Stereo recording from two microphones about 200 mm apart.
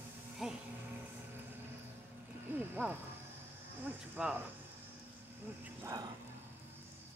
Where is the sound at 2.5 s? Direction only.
10° right (ahead or behind).